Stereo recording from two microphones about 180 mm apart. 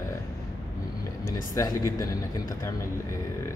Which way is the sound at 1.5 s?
20° left (ahead or behind).